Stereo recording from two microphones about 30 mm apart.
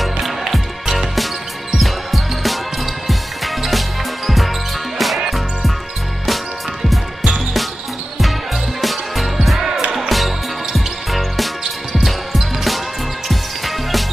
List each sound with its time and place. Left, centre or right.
0.0 s music: centre
4.9 s music: centre
8.8 s music: centre